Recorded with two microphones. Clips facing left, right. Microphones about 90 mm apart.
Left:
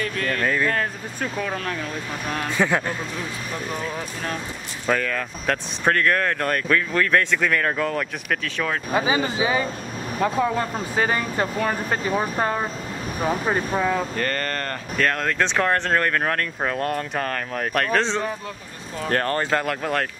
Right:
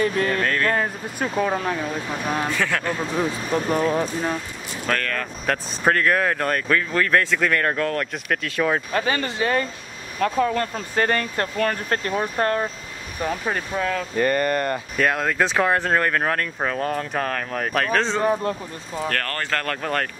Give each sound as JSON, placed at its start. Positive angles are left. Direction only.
{"t": 0.0, "sound": "speech", "side_deg": -25}
{"t": 0.4, "sound": "speech", "side_deg": 5}
{"t": 0.7, "sound": "speech", "side_deg": -15}
{"t": 2.5, "sound": "speech", "side_deg": 15}
{"t": 4.8, "sound": "speech", "side_deg": 5}
{"t": 8.9, "sound": "speech", "side_deg": 10}
{"t": 14.1, "sound": "speech", "side_deg": -15}
{"t": 19.0, "sound": "speech", "side_deg": 20}
{"t": 19.6, "sound": "speech", "side_deg": 5}